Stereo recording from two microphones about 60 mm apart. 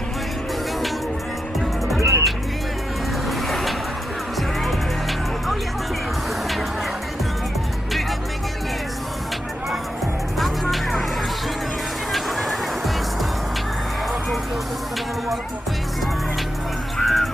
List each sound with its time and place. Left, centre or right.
2.0 s music: right
3.3 s vehicle: centre
4.4 s music: centre
10.4 s music: centre
12.1 s music: centre
17.0 s music: centre